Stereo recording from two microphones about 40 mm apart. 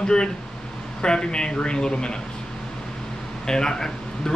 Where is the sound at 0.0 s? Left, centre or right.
Left.